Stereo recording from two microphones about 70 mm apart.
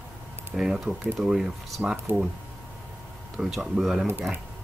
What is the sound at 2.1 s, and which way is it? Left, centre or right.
Speech, right.